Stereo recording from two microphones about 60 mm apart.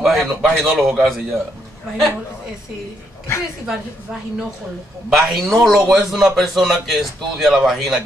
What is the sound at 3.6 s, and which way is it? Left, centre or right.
Speech, centre.